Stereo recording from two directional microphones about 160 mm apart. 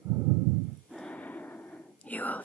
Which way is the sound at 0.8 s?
5° left (ahead or behind).